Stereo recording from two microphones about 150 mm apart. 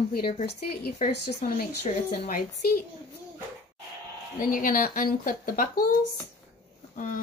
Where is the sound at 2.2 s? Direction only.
65° left (ahead or behind).